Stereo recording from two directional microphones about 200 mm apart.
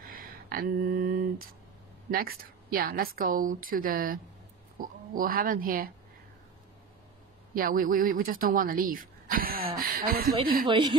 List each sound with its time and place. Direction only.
0.0 s a sound: 45° right (ahead or behind)
2.0 s a woman's voice: 45° right (ahead or behind)
7.5 s a woman's voice: 45° right (ahead or behind)
10.7 s a woman's voice: 25° right (ahead or behind)